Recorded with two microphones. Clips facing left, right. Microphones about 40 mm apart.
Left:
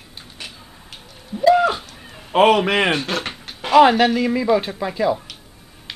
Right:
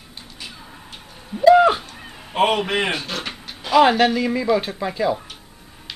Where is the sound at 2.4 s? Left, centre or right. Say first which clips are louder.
Left 4 dB; left.